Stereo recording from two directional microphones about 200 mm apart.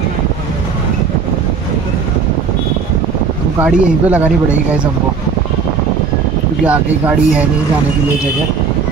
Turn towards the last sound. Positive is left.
turn(degrees=-5)  # may be behind; listen again after turning